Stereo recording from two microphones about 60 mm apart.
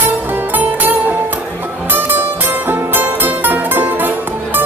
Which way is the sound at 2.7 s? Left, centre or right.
Right.